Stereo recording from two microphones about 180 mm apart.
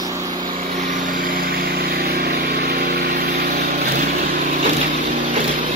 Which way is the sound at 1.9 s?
60° right (ahead or behind).